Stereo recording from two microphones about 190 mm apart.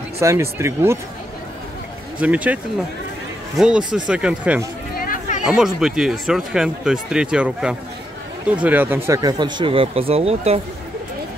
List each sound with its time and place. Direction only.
0.2 s speech: 15° right (ahead or behind)
2.1 s speech: 5° right (ahead or behind)
4.9 s a sound: 45° left (ahead or behind)
5.4 s speech: 5° right (ahead or behind); by 10.6 s 30° right (ahead or behind)